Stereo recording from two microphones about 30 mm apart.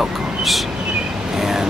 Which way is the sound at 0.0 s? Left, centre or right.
Centre.